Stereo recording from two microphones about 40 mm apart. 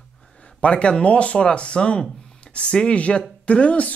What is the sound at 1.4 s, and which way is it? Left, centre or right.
Speech, left.